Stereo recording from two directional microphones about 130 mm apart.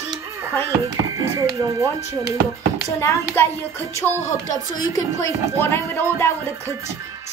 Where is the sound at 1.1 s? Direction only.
25° right (ahead or behind).